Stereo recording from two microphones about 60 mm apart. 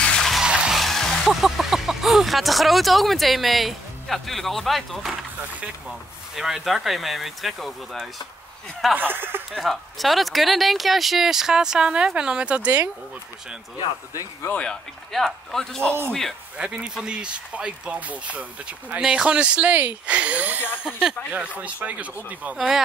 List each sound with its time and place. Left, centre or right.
0.0 s music: centre
0.4 s music: centre
0.7 s speech: centre
6.3 s speech: centre
8.9 s speech: right
9.5 s speech: centre
14.5 s speech: centre
15.1 s speech: centre
16.5 s speech: centre
18.9 s speech: centre
20.8 s speech: centre
21.5 s speech: right
22.6 s speech: centre